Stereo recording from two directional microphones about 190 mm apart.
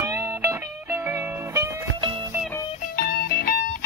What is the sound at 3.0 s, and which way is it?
Music, 55° left (ahead or behind).